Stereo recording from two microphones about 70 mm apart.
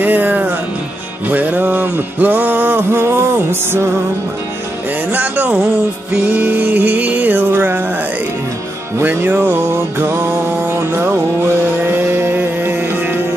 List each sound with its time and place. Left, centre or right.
0.0 s music: right
5.1 s music: right
9.0 s music: right